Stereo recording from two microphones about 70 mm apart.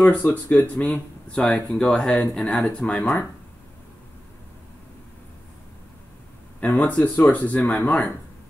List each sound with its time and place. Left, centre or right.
0.0 s speech: left
6.6 s speech: left